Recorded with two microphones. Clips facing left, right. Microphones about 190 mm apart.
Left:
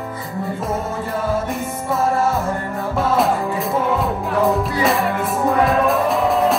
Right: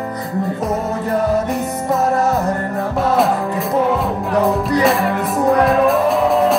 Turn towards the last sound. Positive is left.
turn(degrees=0)  # may be behind; listen again after turning